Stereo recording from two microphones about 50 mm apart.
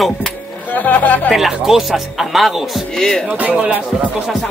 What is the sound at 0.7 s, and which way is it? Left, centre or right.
Speech, left.